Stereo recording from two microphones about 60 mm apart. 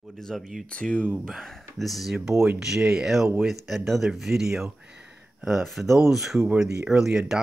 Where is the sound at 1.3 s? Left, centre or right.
Centre.